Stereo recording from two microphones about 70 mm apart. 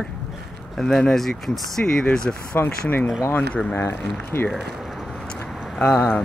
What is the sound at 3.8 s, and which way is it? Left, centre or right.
Speech, left.